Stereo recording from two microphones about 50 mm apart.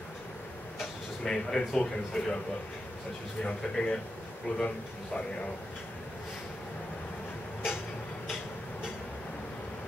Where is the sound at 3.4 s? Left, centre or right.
Left.